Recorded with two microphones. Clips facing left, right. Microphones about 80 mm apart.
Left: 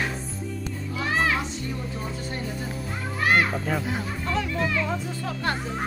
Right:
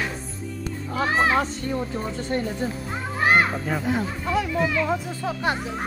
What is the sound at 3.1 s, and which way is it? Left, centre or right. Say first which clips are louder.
Children playing: right 2 dB; right.